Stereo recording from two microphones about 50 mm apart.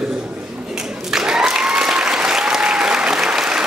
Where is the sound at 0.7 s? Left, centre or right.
Centre.